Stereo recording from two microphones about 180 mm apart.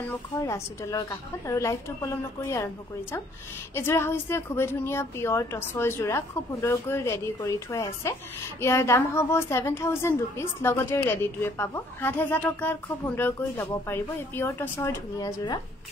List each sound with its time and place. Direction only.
0.0 s a woman's voice: 15° left (ahead or behind)
15.2 s speech: 25° left (ahead or behind)